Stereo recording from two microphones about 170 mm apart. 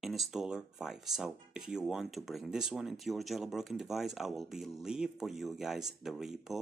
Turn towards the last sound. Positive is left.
turn(degrees=0)  # may be behind; listen again after turning